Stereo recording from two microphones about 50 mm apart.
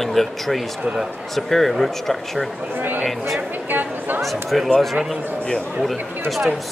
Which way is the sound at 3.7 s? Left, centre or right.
Right.